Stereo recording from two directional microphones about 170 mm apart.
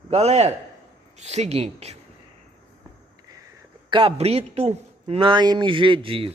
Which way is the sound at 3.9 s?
35° right (ahead or behind).